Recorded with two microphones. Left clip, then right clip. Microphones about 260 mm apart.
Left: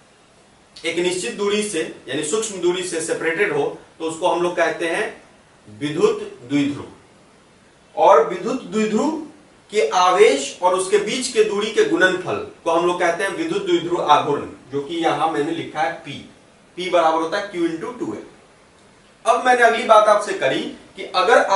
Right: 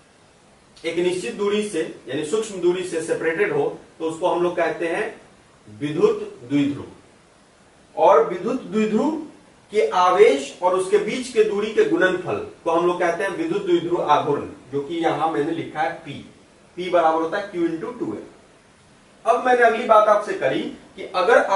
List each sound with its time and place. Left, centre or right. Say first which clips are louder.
0.8 s a man's voice: left 1 dB; centre
3.6 s speech: even; right
4.6 s a man's voice: left 2 dB; centre
8.0 s a man's voice: left 2 dB; centre
19.2 s a man's voice: left 2 dB; centre